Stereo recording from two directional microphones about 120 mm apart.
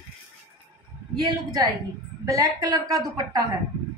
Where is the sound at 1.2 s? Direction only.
35° right (ahead or behind).